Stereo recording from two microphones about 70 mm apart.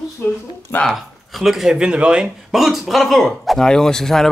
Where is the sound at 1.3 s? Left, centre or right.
Centre.